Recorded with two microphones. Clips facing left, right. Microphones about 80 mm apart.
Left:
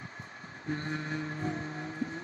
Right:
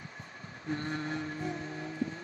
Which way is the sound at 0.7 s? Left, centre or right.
Left.